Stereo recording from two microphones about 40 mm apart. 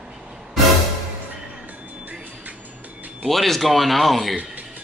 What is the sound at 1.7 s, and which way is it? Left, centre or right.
Train, right.